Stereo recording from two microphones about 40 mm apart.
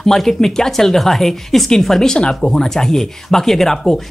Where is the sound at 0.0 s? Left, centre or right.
Centre.